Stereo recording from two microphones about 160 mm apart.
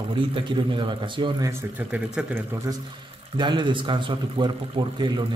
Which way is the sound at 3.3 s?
30° right (ahead or behind).